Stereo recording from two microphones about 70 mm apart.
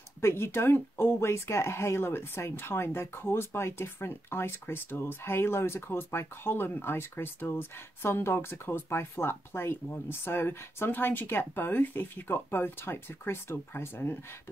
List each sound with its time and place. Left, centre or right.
0.2 s speech: left